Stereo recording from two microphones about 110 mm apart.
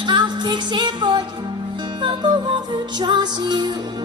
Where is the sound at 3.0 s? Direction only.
40° right (ahead or behind).